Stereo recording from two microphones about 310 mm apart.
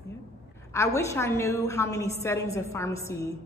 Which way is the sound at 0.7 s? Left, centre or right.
Centre.